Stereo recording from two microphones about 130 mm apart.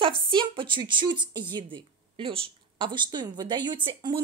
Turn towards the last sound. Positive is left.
turn(degrees=-40)  # may be behind; listen again after turning